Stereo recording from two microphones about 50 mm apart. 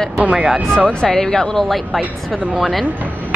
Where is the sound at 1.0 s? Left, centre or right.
Centre.